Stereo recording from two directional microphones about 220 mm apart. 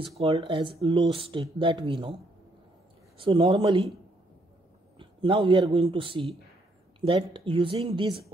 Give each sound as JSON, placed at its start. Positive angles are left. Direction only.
{"t": 0.0, "sound": "speech", "side_deg": -25}
{"t": 3.2, "sound": "speech", "side_deg": -20}
{"t": 4.9, "sound": "a man's voice", "side_deg": -25}